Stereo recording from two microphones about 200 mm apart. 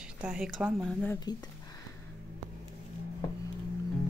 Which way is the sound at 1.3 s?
20° left (ahead or behind).